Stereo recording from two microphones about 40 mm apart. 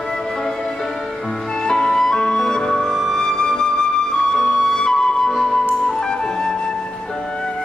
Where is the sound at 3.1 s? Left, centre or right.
Centre.